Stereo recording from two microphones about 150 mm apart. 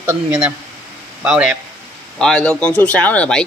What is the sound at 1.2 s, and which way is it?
Speech, 5° right (ahead or behind).